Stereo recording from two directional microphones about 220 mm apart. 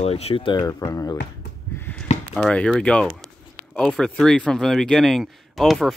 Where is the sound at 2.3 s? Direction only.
5° left (ahead or behind).